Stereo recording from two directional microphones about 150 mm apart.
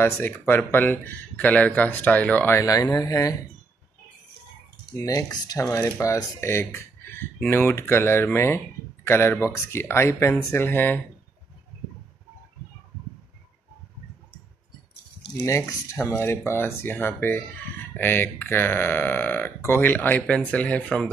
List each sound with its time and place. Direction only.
0.0 s speech: 15° left (ahead or behind)
4.9 s speech: 20° left (ahead or behind)
15.4 s speech: 20° left (ahead or behind)